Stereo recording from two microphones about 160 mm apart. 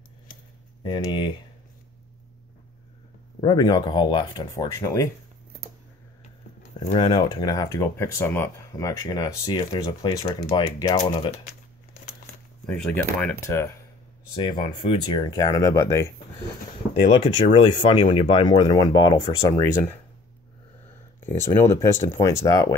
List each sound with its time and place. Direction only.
0.8 s speech: 30° left (ahead or behind)
3.3 s speech: 25° left (ahead or behind)
6.6 s a sound: 45° left (ahead or behind)
7.0 s speech: 25° left (ahead or behind)
11.0 s speech: 35° left (ahead or behind)
12.6 s speech: 10° left (ahead or behind)
14.3 s speech: 30° left (ahead or behind)
17.5 s speech: 30° left (ahead or behind)
21.3 s speech: 15° left (ahead or behind)